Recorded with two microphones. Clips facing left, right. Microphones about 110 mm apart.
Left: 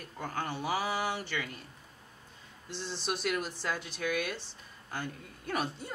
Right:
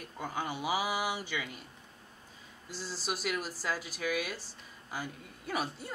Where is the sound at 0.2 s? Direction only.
10° right (ahead or behind).